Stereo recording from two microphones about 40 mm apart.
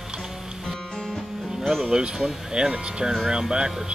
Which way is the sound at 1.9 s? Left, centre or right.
Centre.